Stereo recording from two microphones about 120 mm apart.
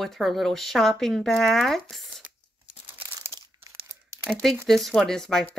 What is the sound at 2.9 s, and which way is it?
Crumpling, 15° right (ahead or behind).